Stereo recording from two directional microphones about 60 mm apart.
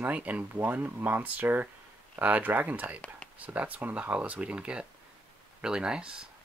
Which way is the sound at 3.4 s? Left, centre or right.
Right.